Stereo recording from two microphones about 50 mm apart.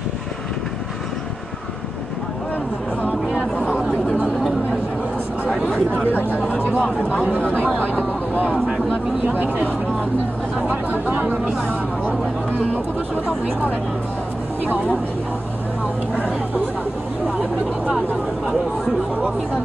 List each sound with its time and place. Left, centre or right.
5.7 s chatter: left
7.0 s speech: left
7.8 s a sound: left
8.6 s a sound: centre
9.3 s speech: right
10.7 s speech: right